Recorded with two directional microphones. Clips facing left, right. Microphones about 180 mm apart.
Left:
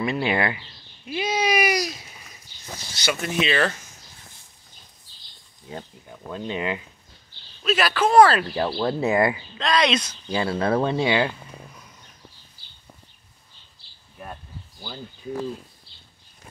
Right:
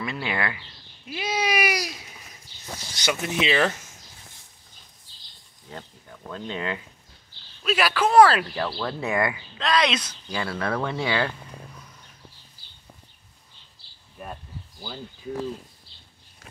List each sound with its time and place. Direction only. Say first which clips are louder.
0.0 s speech: left 6 dB; 20° left (ahead or behind)
1.0 s speech: left 3 dB; centre (ahead or behind)
3.1 s speech: left 1 dB; 15° right (ahead or behind)
5.7 s speech: left 4 dB; 20° left (ahead or behind)
7.6 s speech: left 1 dB; 10° right (ahead or behind)
8.5 s speech: left 5 dB; 25° left (ahead or behind)
9.6 s speech: left 1 dB; 5° right (ahead or behind)
10.3 s speech: left 5 dB; 25° left (ahead or behind)
14.1 s a sound: right 1 dB; 5° right (ahead or behind)